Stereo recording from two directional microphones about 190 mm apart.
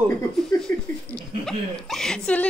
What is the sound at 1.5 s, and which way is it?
Speech, 5° left (ahead or behind).